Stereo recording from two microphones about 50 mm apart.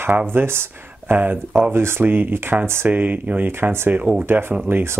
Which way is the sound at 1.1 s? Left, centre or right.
Right.